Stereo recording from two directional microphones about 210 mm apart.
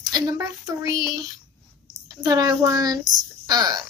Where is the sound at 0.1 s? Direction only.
20° right (ahead or behind).